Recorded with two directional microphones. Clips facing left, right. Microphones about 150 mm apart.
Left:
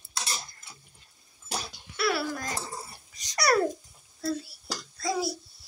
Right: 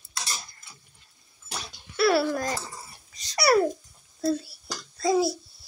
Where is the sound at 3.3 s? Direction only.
10° right (ahead or behind).